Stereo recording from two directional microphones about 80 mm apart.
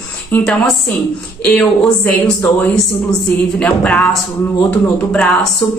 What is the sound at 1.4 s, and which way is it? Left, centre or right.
Speech, centre.